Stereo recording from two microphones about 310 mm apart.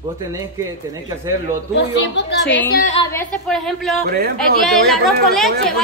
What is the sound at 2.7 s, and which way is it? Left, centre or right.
Speech, left.